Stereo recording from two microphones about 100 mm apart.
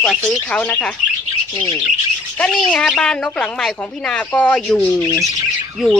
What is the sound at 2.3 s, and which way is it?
Speech, 10° left (ahead or behind).